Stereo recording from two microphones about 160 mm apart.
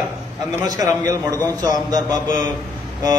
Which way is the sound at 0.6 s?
20° right (ahead or behind).